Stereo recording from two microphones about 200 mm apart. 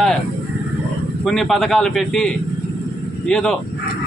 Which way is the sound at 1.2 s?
Centre (ahead or behind).